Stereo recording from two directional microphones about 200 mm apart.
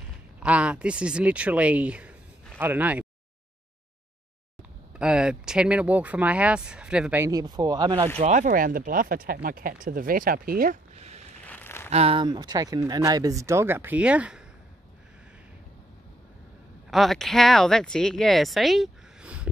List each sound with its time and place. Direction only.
0.4 s speech: 5° right (ahead or behind)
4.9 s speech: 5° right (ahead or behind); by 8.1 s 20° right (ahead or behind)
8.2 s speech: 40° right (ahead or behind)
11.4 s a sound: 10° left (ahead or behind)
11.9 s speech: 30° right (ahead or behind); by 14.4 s 5° right (ahead or behind)
16.9 s speech: centre (ahead or behind)